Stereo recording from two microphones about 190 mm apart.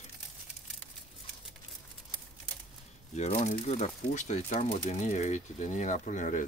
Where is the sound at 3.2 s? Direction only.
35° left (ahead or behind).